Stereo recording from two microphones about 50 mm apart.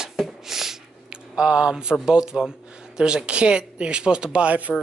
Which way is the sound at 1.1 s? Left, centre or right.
Centre.